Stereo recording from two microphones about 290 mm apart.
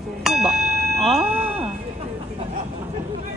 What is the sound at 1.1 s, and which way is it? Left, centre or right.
Chink, centre.